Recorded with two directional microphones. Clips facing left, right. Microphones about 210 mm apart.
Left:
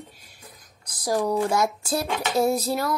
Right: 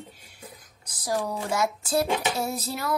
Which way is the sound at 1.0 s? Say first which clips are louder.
Left 6 dB; 45° left (ahead or behind).